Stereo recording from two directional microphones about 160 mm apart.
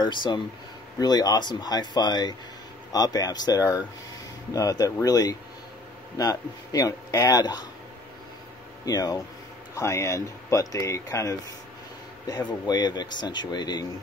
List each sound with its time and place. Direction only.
0.0 s speech: 30° left (ahead or behind)
8.8 s speech: 25° left (ahead or behind)